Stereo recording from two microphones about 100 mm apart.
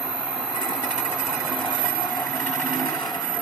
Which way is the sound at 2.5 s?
5° left (ahead or behind).